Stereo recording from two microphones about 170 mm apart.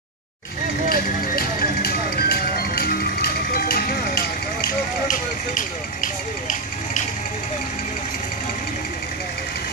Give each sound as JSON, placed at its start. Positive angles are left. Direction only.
{"t": 0.8, "sound": "music", "side_deg": 60}